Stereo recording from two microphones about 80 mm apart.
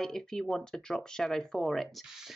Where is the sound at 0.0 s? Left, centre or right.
Centre.